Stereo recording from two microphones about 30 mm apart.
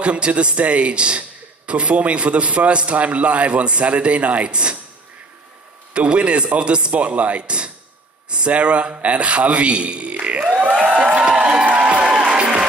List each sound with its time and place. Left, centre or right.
0.0 s speech: right
4.5 s speech: right
5.9 s speech: right
6.9 s speech: right
7.4 s a sound: right
8.5 s a man's voice: right
11.0 s a sound: right
11.6 s a sound: right
12.0 s music: right